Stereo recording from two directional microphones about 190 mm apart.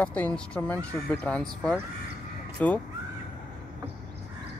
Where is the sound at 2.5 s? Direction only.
10° left (ahead or behind).